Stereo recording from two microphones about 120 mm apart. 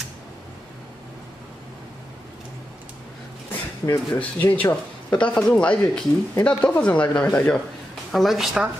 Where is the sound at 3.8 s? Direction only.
20° left (ahead or behind).